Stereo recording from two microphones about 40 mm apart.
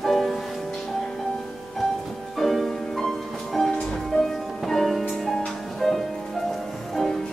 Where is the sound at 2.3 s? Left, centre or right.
Centre.